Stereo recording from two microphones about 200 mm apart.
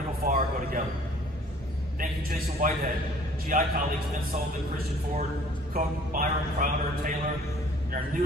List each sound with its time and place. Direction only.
0.2 s a sound: 50° right (ahead or behind)
2.0 s a man's voice: 45° right (ahead or behind)
5.7 s a man's voice: 40° right (ahead or behind)